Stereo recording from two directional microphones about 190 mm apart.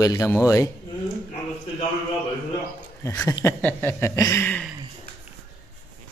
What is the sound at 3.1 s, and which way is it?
Speech, 15° left (ahead or behind).